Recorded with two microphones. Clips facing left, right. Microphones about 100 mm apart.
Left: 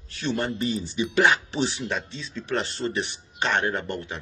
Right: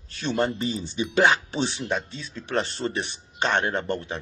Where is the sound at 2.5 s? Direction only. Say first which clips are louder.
Right 1 dB; 25° right (ahead or behind).